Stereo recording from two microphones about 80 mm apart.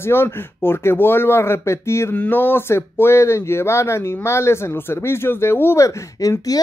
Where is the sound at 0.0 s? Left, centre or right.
Left.